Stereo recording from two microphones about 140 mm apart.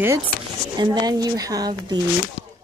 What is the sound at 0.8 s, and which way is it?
Speech, 30° right (ahead or behind).